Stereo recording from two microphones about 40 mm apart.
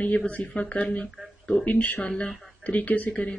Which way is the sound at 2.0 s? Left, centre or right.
Left.